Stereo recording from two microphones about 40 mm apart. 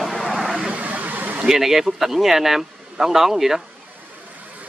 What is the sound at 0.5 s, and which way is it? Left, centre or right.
Vehicle, right.